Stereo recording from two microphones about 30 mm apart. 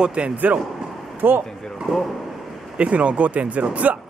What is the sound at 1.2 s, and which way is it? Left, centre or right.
Speech, right.